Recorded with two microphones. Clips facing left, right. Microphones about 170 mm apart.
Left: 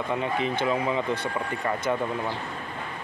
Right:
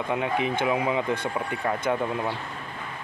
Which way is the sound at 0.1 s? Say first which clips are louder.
Right 2 dB; 10° right (ahead or behind).